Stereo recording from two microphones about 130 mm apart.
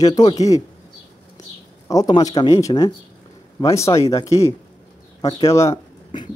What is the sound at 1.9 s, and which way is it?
Speech, 30° left (ahead or behind).